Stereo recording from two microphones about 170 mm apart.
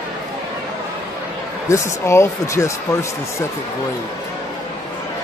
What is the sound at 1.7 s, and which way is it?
Speech, 15° left (ahead or behind).